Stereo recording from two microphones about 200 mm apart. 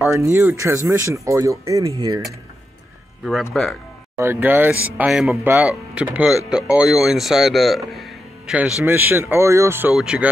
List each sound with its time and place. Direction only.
0.0 s speech: 15° right (ahead or behind)
3.6 s speech: 5° left (ahead or behind)
4.2 s speech: 10° right (ahead or behind)